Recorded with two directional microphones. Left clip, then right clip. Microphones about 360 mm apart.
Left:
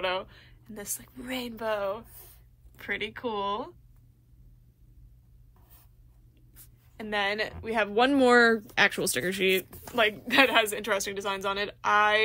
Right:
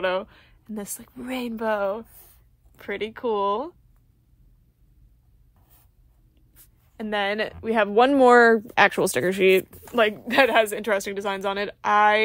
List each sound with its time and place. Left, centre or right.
0.0 s speech: centre
6.5 s speech: centre